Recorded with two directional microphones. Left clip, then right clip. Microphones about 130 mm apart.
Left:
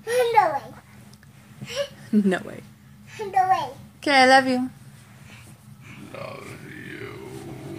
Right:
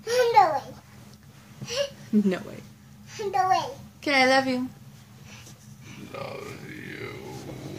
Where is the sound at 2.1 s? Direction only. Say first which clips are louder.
Left 2 dB; 25° left (ahead or behind).